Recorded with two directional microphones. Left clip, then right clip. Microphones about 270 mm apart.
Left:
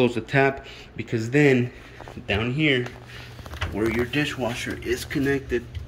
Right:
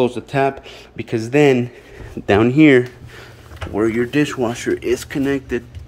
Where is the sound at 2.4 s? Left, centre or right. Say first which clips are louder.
Right 11 dB; centre.